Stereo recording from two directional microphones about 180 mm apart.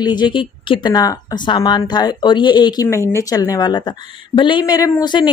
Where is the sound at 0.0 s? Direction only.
25° left (ahead or behind).